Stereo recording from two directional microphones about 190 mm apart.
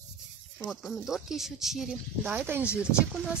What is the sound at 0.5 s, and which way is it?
Speech, 5° left (ahead or behind).